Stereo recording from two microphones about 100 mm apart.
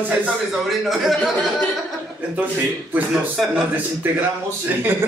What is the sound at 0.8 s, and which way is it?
Speech, centre (ahead or behind).